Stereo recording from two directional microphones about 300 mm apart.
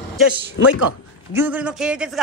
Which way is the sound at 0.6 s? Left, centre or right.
Left.